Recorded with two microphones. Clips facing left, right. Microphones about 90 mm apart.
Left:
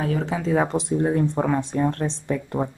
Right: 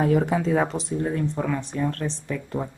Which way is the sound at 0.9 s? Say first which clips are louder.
Left 5 dB; 35° left (ahead or behind).